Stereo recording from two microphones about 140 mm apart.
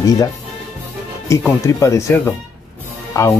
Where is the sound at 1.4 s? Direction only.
20° left (ahead or behind).